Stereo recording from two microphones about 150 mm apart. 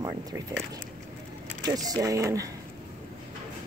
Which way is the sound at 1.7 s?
25° right (ahead or behind).